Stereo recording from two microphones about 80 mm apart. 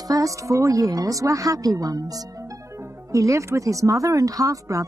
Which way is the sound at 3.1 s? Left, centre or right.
Right.